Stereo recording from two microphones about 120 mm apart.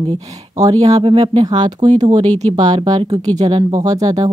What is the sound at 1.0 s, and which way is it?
Speech, 45° right (ahead or behind).